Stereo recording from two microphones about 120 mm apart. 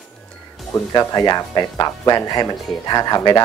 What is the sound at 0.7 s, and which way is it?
Speech, 30° left (ahead or behind).